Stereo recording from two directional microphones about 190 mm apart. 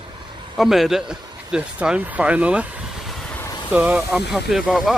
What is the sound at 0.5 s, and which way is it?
A man's voice, centre (ahead or behind).